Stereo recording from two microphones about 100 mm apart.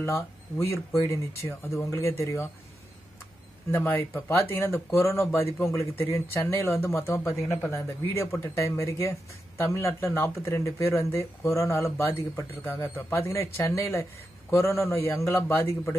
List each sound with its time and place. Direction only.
0.0 s speech: 30° left (ahead or behind)
3.7 s speech: 20° left (ahead or behind)